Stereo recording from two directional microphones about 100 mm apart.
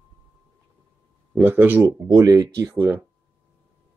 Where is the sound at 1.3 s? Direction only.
20° right (ahead or behind).